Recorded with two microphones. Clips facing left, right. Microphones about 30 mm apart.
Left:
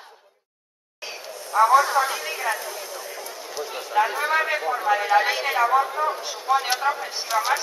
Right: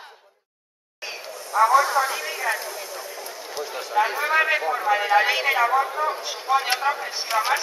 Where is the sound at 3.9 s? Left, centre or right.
Centre.